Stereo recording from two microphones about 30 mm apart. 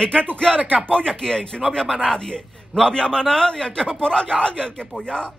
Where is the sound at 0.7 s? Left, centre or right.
Right.